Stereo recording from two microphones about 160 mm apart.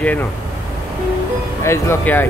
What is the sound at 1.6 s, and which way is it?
Speech, 15° left (ahead or behind).